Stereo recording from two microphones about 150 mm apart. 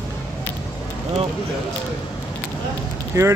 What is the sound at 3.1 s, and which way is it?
Speech, 20° right (ahead or behind).